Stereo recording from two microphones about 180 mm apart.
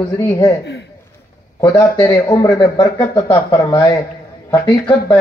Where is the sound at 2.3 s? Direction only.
25° left (ahead or behind).